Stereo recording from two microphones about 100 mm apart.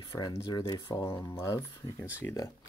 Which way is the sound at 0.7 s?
50° left (ahead or behind).